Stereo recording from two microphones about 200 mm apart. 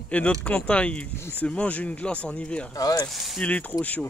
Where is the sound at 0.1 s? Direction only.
5° left (ahead or behind).